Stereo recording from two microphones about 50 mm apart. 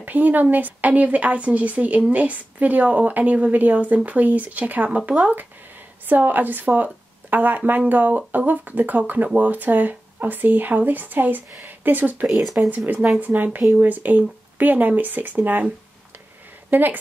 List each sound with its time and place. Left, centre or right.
0.0 s speech: right
12.3 s speech: centre
12.5 s speech: right
16.7 s speech: right